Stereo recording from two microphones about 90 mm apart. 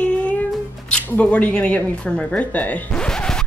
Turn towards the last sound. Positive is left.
turn(degrees=10)  # may be behind; listen again after turning